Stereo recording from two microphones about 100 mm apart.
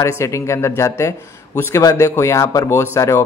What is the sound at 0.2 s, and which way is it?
A man's voice, 30° left (ahead or behind).